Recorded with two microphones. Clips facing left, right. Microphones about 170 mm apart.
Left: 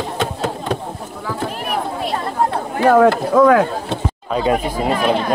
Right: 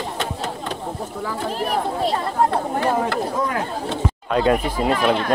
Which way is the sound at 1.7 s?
15° left (ahead or behind).